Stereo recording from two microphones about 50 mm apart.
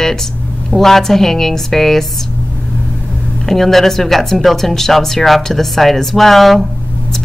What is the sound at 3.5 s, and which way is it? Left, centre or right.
Speech, centre.